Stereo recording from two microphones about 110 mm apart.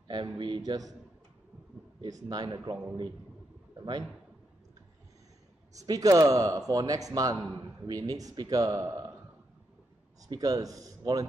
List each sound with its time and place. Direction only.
0.1 s a man's voice: 45° right (ahead or behind)
2.0 s a man's voice: 35° right (ahead or behind)
5.8 s a man's voice: 30° right (ahead or behind)
10.2 s a man's voice: 35° right (ahead or behind)